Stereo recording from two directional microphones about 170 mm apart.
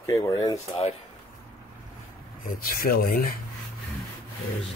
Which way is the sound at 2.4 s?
60° left (ahead or behind).